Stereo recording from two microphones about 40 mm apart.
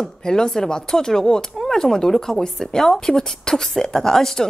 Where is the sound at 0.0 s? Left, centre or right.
Centre.